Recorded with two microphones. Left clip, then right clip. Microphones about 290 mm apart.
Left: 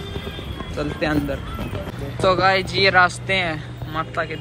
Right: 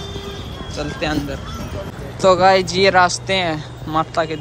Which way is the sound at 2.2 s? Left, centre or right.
Centre.